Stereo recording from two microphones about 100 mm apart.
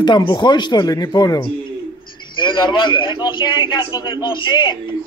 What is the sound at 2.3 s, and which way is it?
A man's voice, 55° left (ahead or behind).